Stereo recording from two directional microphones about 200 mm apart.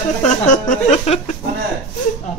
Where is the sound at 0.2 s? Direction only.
35° left (ahead or behind).